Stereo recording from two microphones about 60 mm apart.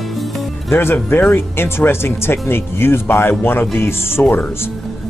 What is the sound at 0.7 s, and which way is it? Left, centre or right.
Speech, left.